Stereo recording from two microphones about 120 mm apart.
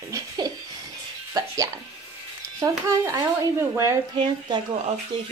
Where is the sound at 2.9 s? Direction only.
25° right (ahead or behind).